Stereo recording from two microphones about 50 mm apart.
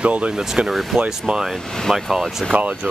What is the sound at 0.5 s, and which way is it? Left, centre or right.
Speech, centre.